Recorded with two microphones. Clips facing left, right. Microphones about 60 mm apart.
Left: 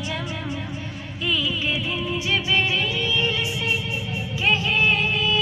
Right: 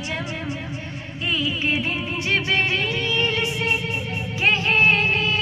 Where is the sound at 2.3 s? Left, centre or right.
Right.